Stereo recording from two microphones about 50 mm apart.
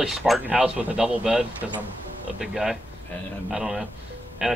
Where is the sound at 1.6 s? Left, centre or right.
Centre.